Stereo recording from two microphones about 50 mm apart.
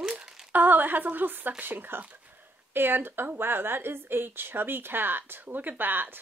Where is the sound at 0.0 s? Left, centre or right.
Centre.